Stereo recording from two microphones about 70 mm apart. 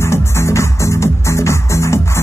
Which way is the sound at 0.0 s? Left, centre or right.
Left.